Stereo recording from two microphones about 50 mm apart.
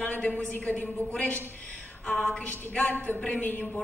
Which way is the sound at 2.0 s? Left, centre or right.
Centre.